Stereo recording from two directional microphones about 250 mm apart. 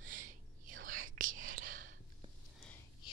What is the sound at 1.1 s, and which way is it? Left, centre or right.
Whispering, right.